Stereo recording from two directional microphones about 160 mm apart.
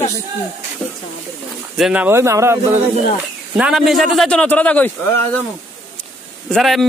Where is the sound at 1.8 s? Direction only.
10° right (ahead or behind).